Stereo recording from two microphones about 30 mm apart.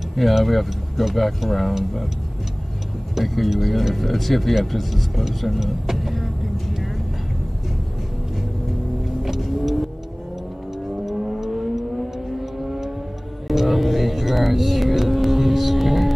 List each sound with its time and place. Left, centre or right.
0.1 s speech: centre
3.2 s speech: centre
5.9 s vehicle: centre
9.2 s vehicle: centre
10.9 s vehicle: centre
13.5 s music: centre